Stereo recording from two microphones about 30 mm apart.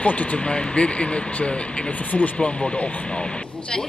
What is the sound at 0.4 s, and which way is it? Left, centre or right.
Speech, left.